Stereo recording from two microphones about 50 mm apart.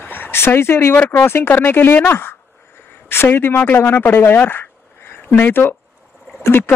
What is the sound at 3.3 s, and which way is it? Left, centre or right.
Speech, left.